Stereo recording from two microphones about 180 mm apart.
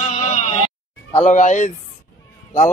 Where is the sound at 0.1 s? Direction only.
40° left (ahead or behind).